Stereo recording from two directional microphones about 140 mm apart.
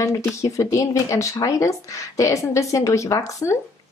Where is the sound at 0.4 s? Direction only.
20° left (ahead or behind).